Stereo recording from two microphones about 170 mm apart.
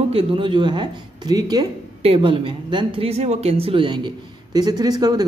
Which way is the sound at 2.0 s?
35° right (ahead or behind).